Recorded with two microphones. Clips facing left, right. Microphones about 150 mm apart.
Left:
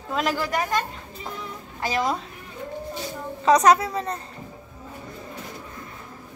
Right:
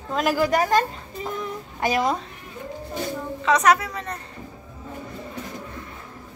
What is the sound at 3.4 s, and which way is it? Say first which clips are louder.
Speech: left 2 dB; 35° left (ahead or behind).